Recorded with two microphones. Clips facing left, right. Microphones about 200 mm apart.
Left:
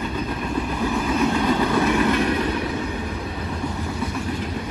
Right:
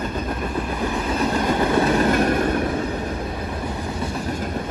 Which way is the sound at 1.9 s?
40° right (ahead or behind).